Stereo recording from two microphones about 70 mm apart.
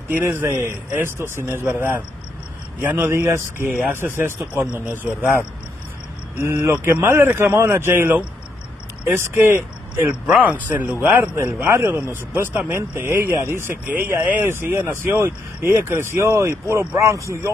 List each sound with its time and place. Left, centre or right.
0.5 s a man's voice: right
3.1 s speech: right
6.3 s speech: right
10.2 s a man's voice: centre
11.3 s speech: right